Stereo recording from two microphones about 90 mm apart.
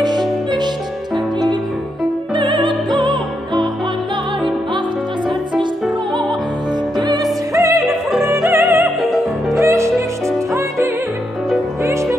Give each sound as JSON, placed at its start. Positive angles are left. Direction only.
{"t": 0.0, "sound": "music", "side_deg": -50}
{"t": 2.3, "sound": "opera", "side_deg": -60}
{"t": 7.0, "sound": "music", "side_deg": -45}
{"t": 7.5, "sound": "opera", "side_deg": -35}
{"t": 8.2, "sound": "music", "side_deg": -30}
{"t": 9.0, "sound": "music", "side_deg": 0}
{"t": 9.6, "sound": "music", "side_deg": -30}